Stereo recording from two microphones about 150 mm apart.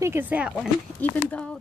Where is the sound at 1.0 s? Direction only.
10° left (ahead or behind).